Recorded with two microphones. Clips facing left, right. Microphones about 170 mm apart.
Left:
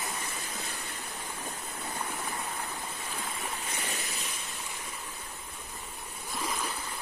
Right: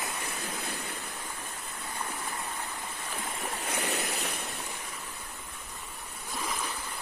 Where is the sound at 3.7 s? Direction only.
65° right (ahead or behind).